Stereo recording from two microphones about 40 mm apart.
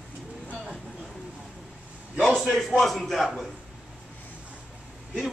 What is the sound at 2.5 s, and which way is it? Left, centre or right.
Speech, centre.